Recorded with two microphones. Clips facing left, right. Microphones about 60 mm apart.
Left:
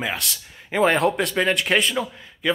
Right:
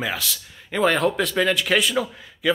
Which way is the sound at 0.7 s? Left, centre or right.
Centre.